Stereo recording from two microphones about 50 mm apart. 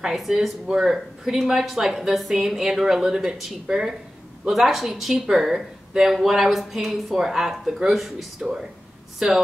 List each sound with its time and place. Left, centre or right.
0.1 s speech: centre